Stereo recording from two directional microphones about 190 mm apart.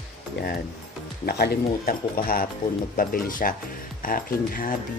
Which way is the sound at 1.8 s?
50° left (ahead or behind).